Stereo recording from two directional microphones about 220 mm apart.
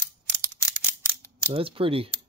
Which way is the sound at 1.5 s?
25° right (ahead or behind).